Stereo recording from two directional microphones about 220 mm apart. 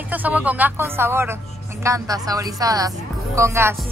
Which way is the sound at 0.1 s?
5° right (ahead or behind).